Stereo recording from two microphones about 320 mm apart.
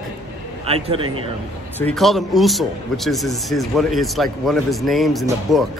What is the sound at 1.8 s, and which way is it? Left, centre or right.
Speech, centre.